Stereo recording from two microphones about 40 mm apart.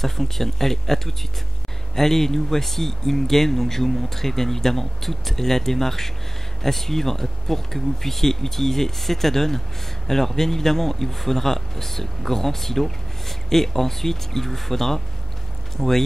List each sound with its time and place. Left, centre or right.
0.0 s speech: centre